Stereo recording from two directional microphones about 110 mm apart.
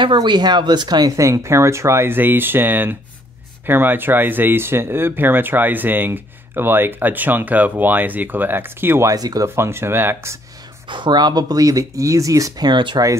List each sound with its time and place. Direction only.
0.0 s speech: 45° right (ahead or behind); by 9.1 s 20° right (ahead or behind)
9.1 s speech: 35° right (ahead or behind)
10.9 s speech: 45° right (ahead or behind)